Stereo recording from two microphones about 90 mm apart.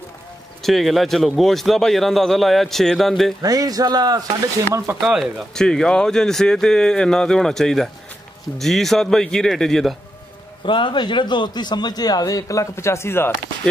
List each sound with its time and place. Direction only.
0.6 s speech: centre (ahead or behind)
3.4 s speech: 45° right (ahead or behind)
5.0 s speech: 5° right (ahead or behind)
5.5 s speech: 5° left (ahead or behind)
10.6 s a man's voice: 65° left (ahead or behind); by 13.3 s 25° left (ahead or behind)